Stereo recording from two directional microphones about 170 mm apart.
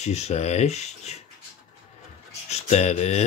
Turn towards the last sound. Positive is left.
turn(degrees=40)  # may be behind; listen again after turning